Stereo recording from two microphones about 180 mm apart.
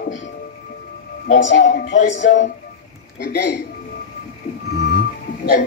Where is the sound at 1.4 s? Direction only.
80° left.